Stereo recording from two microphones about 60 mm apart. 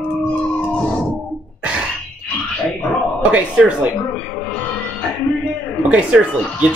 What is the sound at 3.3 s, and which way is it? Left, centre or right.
Speech, centre.